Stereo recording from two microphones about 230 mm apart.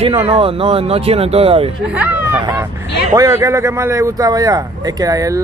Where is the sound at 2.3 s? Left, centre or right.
Centre.